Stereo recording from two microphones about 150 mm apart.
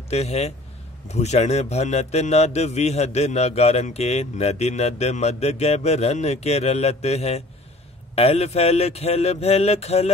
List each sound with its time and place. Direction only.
0.1 s a man's voice: 45° left (ahead or behind)